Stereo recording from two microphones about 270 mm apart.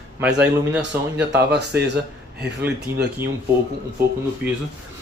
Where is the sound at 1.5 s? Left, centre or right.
Right.